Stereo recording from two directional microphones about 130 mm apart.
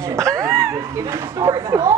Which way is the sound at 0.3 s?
25° right (ahead or behind).